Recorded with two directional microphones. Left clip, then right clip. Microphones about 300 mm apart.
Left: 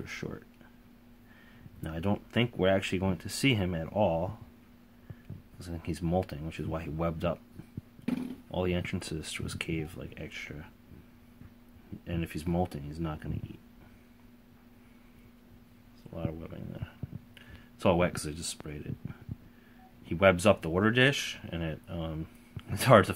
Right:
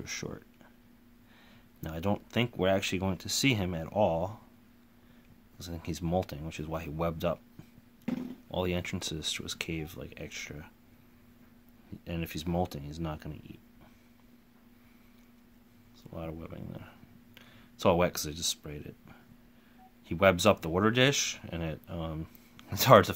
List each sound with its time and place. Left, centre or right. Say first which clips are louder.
0.0 s speech: right 1 dB; centre
1.8 s speech: right 1 dB; centre
5.6 s speech: left 1 dB; centre
8.5 s speech: even; centre
12.0 s speech: even; centre
16.1 s speech: left 2 dB; centre